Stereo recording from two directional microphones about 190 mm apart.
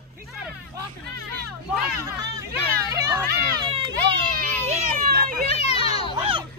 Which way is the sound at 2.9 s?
15° right (ahead or behind).